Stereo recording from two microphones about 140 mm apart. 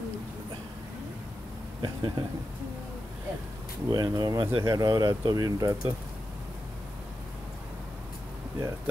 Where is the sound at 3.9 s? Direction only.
30° right (ahead or behind).